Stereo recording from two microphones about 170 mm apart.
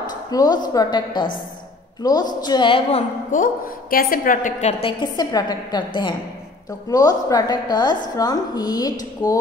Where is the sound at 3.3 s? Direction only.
55° left (ahead or behind).